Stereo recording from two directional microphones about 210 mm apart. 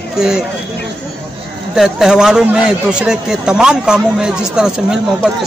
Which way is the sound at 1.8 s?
Centre (ahead or behind).